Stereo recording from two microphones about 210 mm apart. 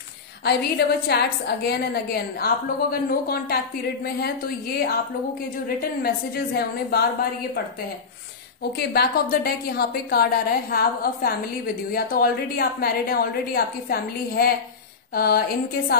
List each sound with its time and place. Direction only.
0.4 s a woman's voice: 50° left (ahead or behind)
6.0 s a woman's voice: 50° left (ahead or behind)
8.7 s a woman's voice: 50° left (ahead or behind)